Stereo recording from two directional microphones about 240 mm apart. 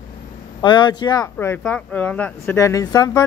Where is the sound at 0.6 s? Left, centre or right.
Centre.